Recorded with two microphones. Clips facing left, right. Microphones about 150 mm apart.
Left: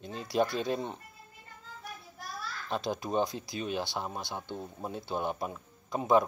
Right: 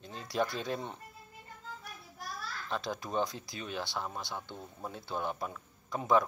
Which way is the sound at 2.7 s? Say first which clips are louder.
Left 4 dB; 20° left (ahead or behind).